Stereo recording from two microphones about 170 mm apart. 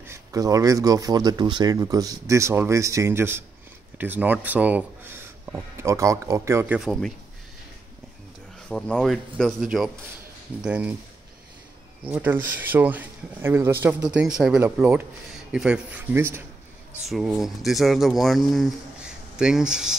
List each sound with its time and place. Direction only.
0.0 s speech: 15° right (ahead or behind)
8.6 s speech: 5° left (ahead or behind)
12.0 s speech: 10° right (ahead or behind)
17.1 s speech: centre (ahead or behind)